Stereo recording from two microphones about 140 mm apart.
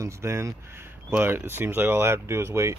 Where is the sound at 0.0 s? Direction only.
20° right (ahead or behind).